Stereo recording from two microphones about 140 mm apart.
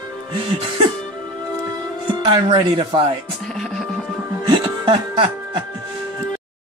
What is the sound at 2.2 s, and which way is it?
Speech, 35° right (ahead or behind).